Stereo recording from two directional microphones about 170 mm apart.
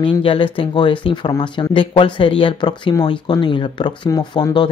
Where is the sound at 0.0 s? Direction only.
30° left (ahead or behind).